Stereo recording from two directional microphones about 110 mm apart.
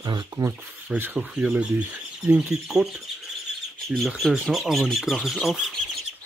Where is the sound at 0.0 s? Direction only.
45° right (ahead or behind).